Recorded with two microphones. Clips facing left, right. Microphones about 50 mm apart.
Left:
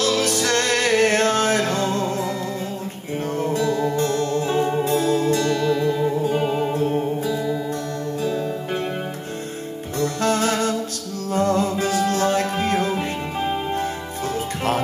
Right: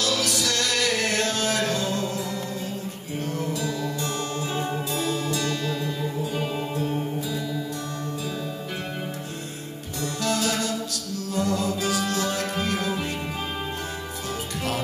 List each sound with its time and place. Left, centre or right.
0.0 s music: left
3.3 s music: left
9.9 s music: left